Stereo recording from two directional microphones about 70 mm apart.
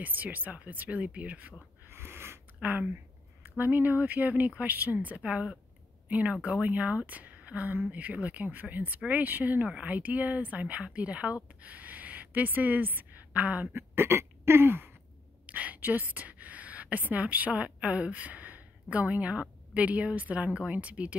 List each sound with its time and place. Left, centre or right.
0.0 s speech: right
1.9 s snort: right
2.6 s a woman's voice: right
15.4 s a woman's voice: right